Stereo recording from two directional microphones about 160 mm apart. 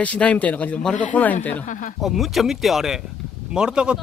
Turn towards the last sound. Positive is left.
turn(degrees=-5)  # may be behind; listen again after turning